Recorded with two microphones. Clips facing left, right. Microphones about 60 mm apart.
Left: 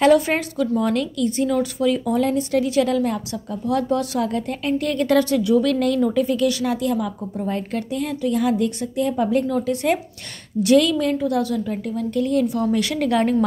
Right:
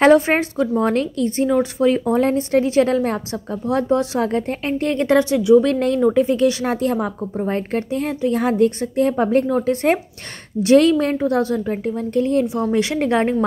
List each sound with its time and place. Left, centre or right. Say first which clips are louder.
0.0 s a woman's voice: right 3 dB; right
5.6 s a woman's voice: right 2 dB; right